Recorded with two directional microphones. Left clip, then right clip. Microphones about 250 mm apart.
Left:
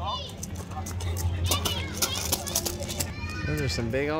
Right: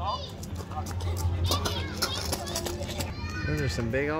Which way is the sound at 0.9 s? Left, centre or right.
Left.